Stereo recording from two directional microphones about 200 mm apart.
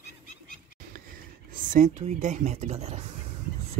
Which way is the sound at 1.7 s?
35° right (ahead or behind).